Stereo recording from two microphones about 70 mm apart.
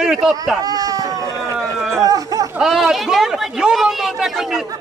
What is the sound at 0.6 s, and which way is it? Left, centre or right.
Speech, right.